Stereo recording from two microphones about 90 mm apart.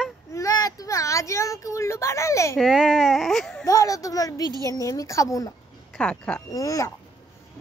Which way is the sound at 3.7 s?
40° left (ahead or behind).